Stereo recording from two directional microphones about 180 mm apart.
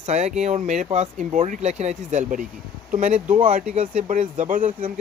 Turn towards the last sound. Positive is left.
turn(degrees=-50)  # may be behind; listen again after turning